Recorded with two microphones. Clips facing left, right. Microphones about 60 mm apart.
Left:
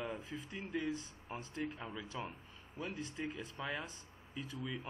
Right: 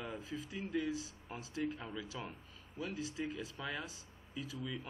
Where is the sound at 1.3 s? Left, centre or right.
Centre.